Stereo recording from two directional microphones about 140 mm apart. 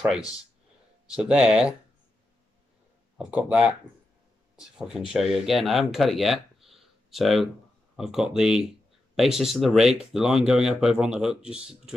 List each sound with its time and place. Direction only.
1.1 s speech: 5° right (ahead or behind)
3.3 s speech: 10° right (ahead or behind)